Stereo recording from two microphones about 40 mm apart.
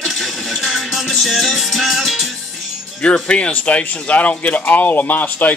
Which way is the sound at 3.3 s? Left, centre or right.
Left.